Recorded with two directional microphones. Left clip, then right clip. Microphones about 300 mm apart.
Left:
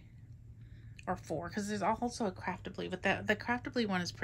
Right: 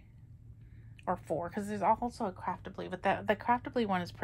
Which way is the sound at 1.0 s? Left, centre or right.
Centre.